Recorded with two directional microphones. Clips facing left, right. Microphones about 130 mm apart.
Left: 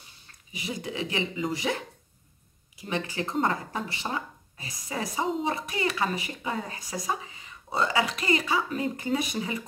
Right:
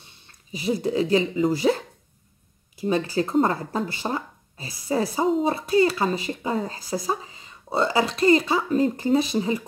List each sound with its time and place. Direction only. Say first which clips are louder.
0.5 s a woman's voice: right 10 dB; 30° right (ahead or behind)
2.8 s a woman's voice: right 8 dB; 35° right (ahead or behind)